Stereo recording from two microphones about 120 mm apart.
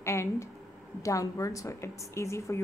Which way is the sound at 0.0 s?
25° left (ahead or behind).